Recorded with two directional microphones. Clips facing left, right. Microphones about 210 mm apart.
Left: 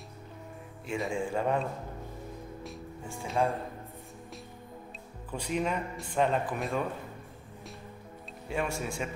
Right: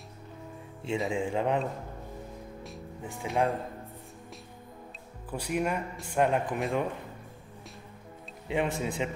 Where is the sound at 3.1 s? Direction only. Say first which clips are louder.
Right 1 dB; 15° right (ahead or behind).